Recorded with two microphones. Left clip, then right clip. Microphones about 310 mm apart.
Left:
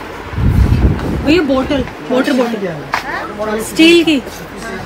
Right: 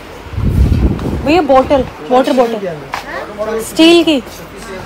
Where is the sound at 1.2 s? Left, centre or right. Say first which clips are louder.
Right 4 dB; centre.